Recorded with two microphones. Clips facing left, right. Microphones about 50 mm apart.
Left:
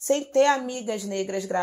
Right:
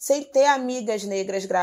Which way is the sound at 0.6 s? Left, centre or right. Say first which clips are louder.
Right 4 dB; right.